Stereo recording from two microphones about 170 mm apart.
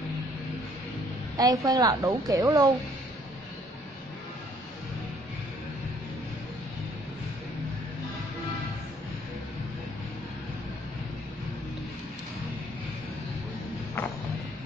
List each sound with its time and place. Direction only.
1.4 s a woman's voice: 20° right (ahead or behind)